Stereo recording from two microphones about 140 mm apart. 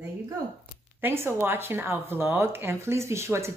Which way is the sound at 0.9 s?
15° right (ahead or behind).